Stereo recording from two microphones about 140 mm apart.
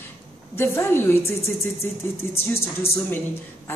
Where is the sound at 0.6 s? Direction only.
15° left (ahead or behind).